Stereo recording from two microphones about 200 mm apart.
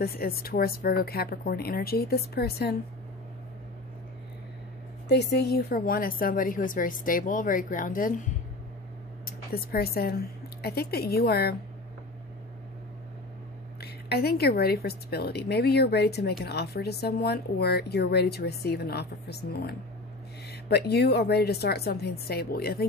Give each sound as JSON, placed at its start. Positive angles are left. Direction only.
{"t": 0.0, "sound": "a woman's voice", "side_deg": 50}
{"t": 5.0, "sound": "a woman's voice", "side_deg": 55}
{"t": 13.7, "sound": "a woman's voice", "side_deg": 55}